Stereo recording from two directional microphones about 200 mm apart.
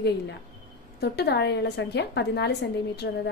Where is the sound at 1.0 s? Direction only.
55° left (ahead or behind).